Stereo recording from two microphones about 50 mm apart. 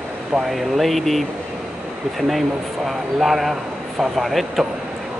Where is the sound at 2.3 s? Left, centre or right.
Centre.